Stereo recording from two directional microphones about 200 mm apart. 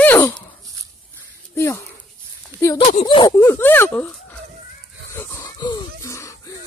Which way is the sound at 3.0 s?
20° left (ahead or behind).